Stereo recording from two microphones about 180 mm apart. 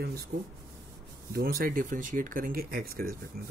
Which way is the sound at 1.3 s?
55° right (ahead or behind).